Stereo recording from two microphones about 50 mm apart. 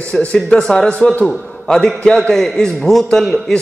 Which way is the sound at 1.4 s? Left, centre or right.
Left.